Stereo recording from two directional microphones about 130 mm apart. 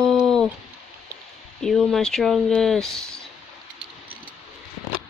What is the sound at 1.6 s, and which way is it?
Speech, 5° left (ahead or behind).